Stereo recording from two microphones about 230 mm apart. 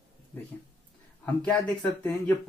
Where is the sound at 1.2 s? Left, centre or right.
Centre.